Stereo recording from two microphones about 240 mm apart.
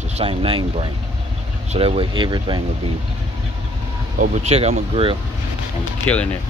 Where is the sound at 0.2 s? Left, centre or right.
Right.